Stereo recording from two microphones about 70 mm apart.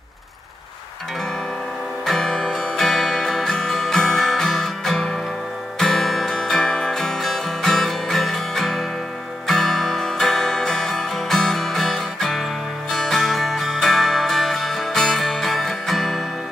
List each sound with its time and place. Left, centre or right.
2.0 s music: centre